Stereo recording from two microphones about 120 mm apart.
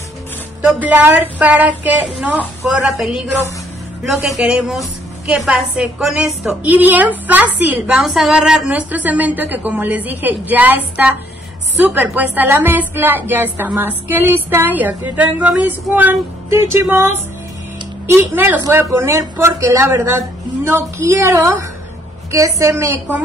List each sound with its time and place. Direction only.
0.6 s a woman's voice: 10° right (ahead or behind)
4.3 s a woman's voice: 5° right (ahead or behind)
11.8 s a woman's voice: 15° right (ahead or behind)